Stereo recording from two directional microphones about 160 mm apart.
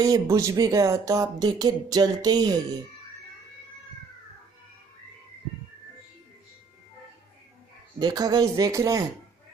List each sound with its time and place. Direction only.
0.0 s speech: 25° right (ahead or behind)
8.0 s speech: 25° right (ahead or behind)